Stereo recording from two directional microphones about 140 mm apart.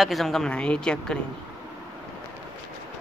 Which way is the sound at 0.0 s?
Centre (ahead or behind).